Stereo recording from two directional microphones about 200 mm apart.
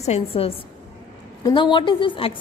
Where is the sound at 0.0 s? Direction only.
30° left (ahead or behind).